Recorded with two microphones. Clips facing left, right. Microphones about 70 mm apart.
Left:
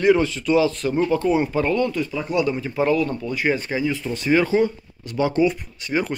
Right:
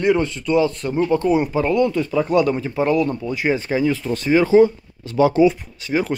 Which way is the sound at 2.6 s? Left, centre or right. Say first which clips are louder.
Right 2 dB; centre.